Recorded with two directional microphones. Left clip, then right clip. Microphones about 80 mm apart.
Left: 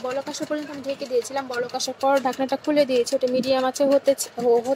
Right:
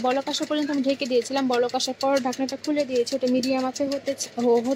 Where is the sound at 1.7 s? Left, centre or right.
Left.